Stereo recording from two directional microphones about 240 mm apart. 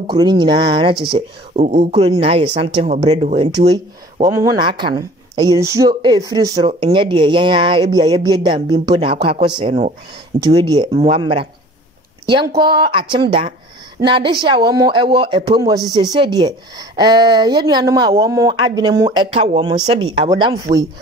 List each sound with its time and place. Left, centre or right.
0.0 s a woman's voice: centre